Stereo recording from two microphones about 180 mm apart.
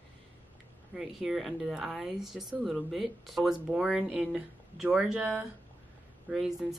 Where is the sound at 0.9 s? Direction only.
Centre (ahead or behind).